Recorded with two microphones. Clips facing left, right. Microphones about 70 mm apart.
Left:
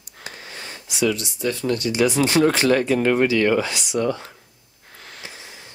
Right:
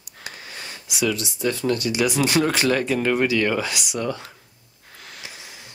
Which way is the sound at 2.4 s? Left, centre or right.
Left.